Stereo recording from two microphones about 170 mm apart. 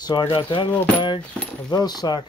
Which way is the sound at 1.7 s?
25° left (ahead or behind).